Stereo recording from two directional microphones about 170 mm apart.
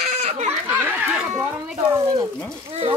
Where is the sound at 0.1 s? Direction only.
40° right (ahead or behind).